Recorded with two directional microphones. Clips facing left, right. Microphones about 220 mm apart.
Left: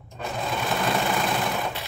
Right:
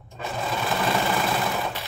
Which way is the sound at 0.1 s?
Centre (ahead or behind).